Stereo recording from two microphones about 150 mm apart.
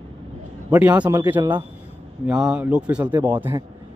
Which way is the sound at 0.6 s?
10° right (ahead or behind).